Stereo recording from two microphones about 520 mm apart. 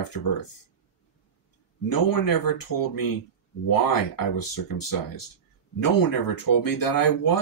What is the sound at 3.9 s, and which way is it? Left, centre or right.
Speech, left.